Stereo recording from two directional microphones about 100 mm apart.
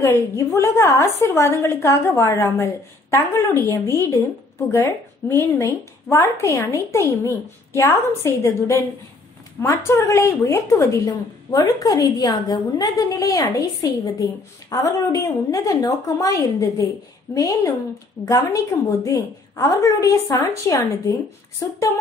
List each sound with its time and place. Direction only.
0.0 s a woman's voice: 30° left (ahead or behind)
14.7 s a woman's voice: 35° left (ahead or behind)